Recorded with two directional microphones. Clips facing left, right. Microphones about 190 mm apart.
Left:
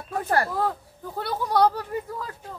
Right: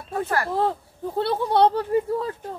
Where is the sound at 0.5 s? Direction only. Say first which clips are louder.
Right 3 dB; 25° right (ahead or behind).